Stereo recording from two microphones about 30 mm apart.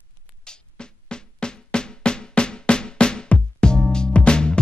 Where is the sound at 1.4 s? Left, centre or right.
Left.